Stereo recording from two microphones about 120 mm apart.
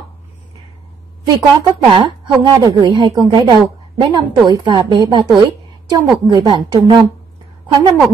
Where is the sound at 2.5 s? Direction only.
35° right (ahead or behind).